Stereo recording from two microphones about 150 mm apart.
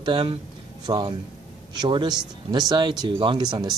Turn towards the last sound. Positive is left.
turn(degrees=-30)  # may be behind; listen again after turning